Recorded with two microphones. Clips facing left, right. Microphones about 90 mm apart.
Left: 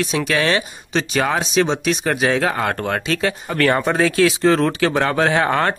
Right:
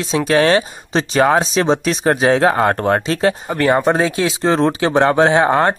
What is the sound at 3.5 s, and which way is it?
Speech, 20° right (ahead or behind).